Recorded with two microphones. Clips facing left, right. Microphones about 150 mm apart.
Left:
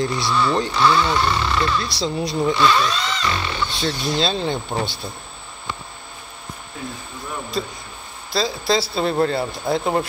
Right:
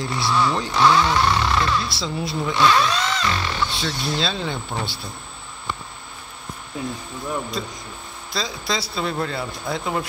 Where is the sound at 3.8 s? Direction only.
30° left (ahead or behind).